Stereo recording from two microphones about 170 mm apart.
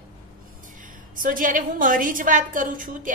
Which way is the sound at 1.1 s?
50° right (ahead or behind).